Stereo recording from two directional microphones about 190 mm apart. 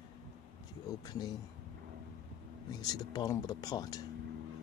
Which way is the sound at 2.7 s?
20° left (ahead or behind).